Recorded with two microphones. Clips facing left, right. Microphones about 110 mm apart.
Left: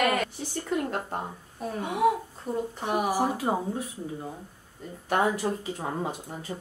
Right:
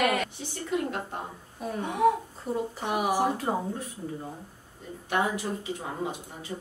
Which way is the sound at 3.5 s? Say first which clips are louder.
Left 1 dB; 20° left (ahead or behind).